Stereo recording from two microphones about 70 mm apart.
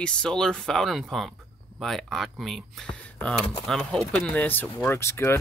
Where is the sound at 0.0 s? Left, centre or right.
Centre.